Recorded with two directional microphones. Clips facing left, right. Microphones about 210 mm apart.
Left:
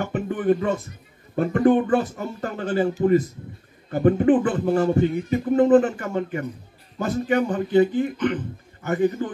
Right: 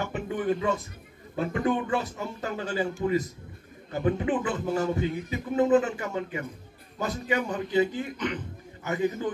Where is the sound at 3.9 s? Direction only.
50° left (ahead or behind).